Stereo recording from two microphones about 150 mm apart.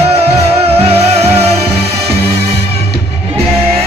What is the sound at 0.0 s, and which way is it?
Music, 40° right (ahead or behind).